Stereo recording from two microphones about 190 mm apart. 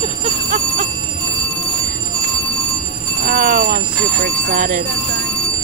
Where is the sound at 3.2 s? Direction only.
50° right (ahead or behind).